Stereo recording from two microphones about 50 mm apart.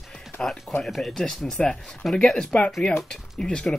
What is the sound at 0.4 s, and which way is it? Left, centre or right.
Speech, centre.